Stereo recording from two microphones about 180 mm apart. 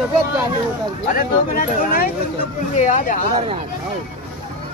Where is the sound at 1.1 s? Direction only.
50° left (ahead or behind).